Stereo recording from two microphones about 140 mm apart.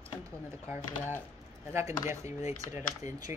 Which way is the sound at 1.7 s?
20° right (ahead or behind).